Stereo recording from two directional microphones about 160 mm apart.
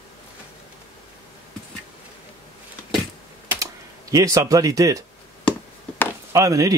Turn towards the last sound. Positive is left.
turn(degrees=-20)  # may be behind; listen again after turning